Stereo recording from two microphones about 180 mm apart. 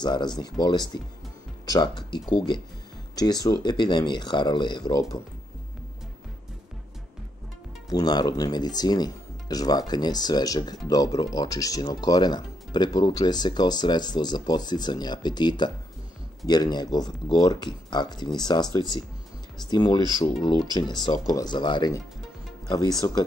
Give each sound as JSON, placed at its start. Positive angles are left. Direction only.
{"t": 0.0, "sound": "speech", "side_deg": 25}
{"t": 7.9, "sound": "speech", "side_deg": 20}